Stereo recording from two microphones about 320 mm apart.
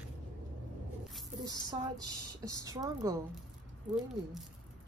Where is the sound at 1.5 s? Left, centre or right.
Centre.